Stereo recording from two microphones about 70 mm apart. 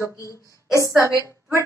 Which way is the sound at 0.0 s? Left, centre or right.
Left.